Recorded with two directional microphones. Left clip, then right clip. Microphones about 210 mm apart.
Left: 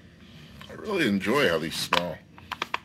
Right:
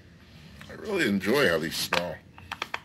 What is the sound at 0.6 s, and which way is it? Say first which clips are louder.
Speech: left 1 dB; centre (ahead or behind).